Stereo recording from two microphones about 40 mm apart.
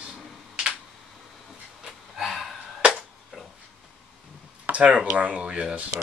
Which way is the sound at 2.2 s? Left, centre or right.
Centre.